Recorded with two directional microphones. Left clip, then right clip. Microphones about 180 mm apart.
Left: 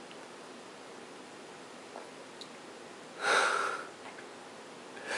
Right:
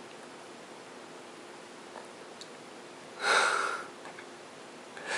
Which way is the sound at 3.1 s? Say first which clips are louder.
Right 2 dB; 5° right (ahead or behind).